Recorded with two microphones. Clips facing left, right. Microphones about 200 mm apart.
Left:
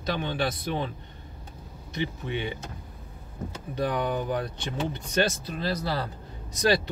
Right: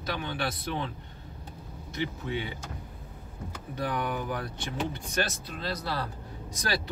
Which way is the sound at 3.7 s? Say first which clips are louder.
Left 4 dB; 20° left (ahead or behind).